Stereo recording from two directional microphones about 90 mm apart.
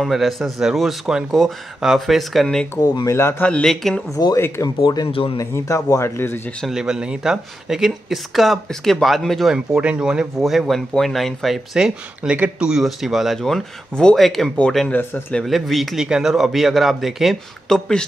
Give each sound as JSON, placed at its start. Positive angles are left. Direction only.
{"t": 0.0, "sound": "speech", "side_deg": 0}
{"t": 2.8, "sound": "speech", "side_deg": 50}
{"t": 3.1, "sound": "speech", "side_deg": 30}
{"t": 3.6, "sound": "speech", "side_deg": 5}
{"t": 4.6, "sound": "speech", "side_deg": 45}
{"t": 5.1, "sound": "speech", "side_deg": 90}
{"t": 5.4, "sound": "speech", "side_deg": 35}
{"t": 6.7, "sound": "speech", "side_deg": -5}
{"t": 9.5, "sound": "speech", "side_deg": -10}
{"t": 14.9, "sound": "speech", "side_deg": 20}
{"t": 15.3, "sound": "speech", "side_deg": 0}